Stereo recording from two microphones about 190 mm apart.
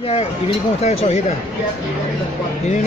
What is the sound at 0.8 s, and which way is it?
Speech, 35° left (ahead or behind).